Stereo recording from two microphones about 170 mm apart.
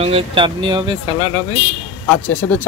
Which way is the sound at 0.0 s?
30° right (ahead or behind).